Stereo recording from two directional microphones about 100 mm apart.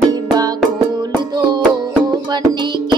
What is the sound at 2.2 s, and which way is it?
Music, 50° right (ahead or behind).